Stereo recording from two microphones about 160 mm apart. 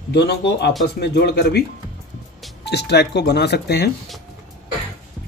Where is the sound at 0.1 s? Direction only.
90° left.